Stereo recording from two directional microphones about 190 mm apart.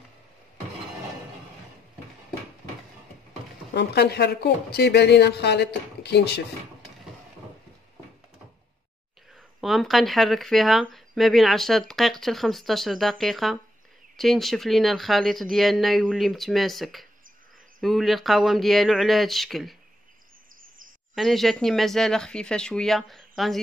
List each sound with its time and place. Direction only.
3.7 s speech: 60° left (ahead or behind)
9.6 s speech: centre (ahead or behind)
21.1 s speech: centre (ahead or behind)